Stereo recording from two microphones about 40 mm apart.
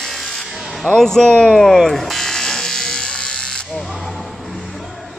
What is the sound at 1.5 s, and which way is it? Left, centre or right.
Electric shaver, centre.